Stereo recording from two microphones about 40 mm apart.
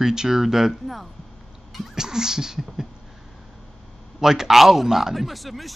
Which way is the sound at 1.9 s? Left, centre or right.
Centre.